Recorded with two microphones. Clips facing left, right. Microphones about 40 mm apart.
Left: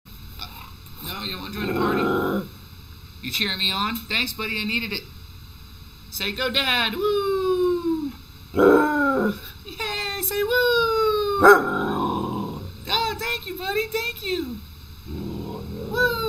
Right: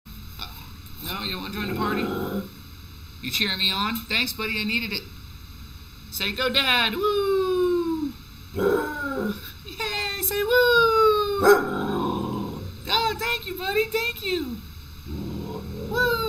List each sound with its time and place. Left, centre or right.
1.0 s speech: centre
3.2 s speech: centre
6.1 s speech: centre
8.5 s dog: left
9.3 s a sound: centre
15.0 s cat: centre